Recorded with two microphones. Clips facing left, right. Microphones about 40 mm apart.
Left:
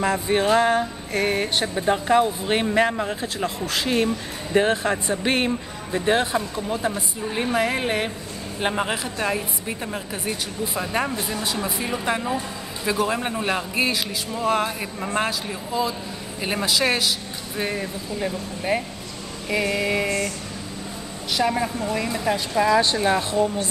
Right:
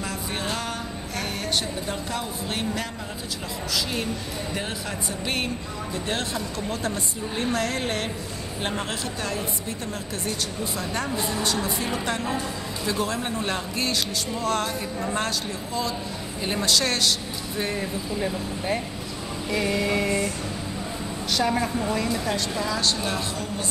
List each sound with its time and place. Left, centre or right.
0.0 s a sound: left
5.9 s a woman's voice: left; by 20.1 s centre
20.1 s speech: centre
21.3 s a woman's voice: centre
21.9 s a woman's voice: centre